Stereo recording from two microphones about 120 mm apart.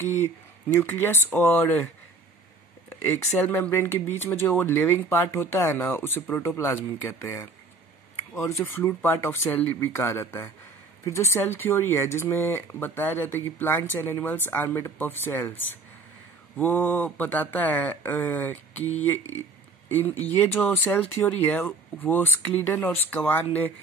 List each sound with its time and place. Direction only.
0.0 s speech: 20° left (ahead or behind)
3.0 s speech: 15° left (ahead or behind)